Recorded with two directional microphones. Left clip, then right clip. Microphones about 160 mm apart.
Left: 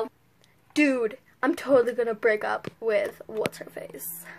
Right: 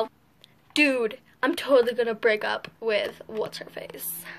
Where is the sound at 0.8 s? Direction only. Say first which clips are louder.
Right 1 dB; 40° left (ahead or behind).